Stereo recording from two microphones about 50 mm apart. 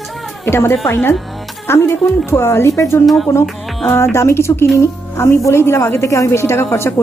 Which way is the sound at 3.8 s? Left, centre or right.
Left.